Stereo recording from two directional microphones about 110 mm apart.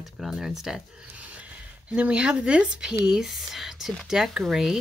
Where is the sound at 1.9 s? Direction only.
10° right (ahead or behind).